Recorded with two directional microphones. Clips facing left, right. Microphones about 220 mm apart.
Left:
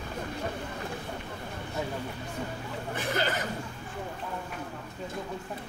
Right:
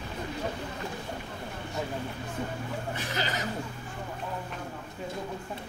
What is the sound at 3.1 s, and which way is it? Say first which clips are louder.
Chuckle: left 3 dB; 55° left (ahead or behind).